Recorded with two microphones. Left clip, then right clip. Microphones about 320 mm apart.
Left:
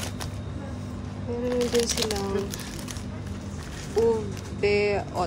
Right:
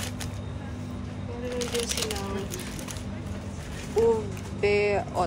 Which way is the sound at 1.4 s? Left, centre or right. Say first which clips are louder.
Left 5 dB; centre.